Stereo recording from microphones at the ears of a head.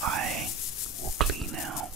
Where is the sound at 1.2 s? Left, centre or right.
Right.